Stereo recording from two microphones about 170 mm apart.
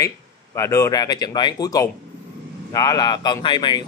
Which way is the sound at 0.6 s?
20° left (ahead or behind).